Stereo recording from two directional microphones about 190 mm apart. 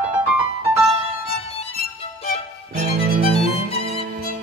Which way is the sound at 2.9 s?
50° right (ahead or behind).